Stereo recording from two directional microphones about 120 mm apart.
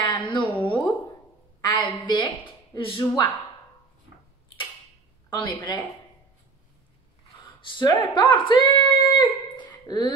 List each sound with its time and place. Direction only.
0.0 s a sound: 40° left (ahead or behind)
5.3 s speech: 40° left (ahead or behind)
7.7 s speech: 35° left (ahead or behind)